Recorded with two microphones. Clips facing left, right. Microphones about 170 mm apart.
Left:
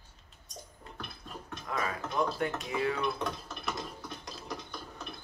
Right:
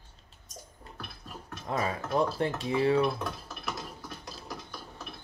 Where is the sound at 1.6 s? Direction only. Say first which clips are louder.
Right 4 dB; 30° right (ahead or behind).